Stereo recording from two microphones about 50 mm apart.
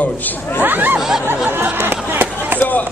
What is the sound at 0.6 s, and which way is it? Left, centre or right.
Speech, right.